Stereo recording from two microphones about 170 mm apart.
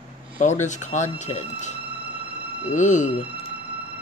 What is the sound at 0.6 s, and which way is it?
Speech, 45° left (ahead or behind).